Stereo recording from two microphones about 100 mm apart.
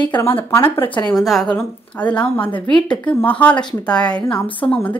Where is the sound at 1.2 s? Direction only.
Centre (ahead or behind).